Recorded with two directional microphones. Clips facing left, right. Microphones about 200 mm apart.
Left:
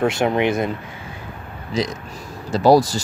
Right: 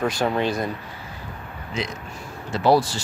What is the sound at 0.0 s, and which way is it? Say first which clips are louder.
Speech: left 4 dB; 25° left (ahead or behind).